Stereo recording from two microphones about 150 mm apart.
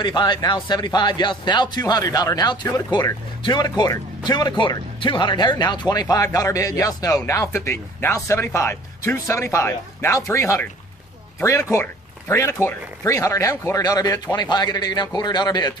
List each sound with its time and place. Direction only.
0.0 s speech: 30° left (ahead or behind)